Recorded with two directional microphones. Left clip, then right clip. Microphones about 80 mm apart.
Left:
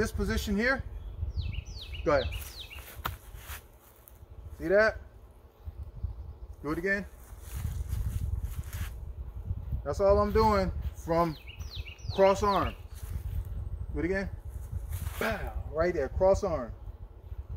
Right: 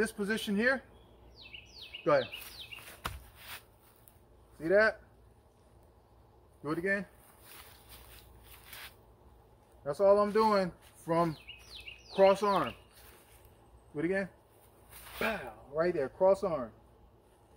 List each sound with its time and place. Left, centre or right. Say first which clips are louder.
0.0 s speech: left 1 dB; left
4.6 s speech: left 2 dB; centre
6.6 s speech: left 2 dB; centre
7.4 s a sound: left 5 dB; centre
8.6 s a sound: even; right
9.8 s speech: left 1 dB; centre
13.9 s speech: left 1 dB; centre
15.0 s speech: left 2 dB; centre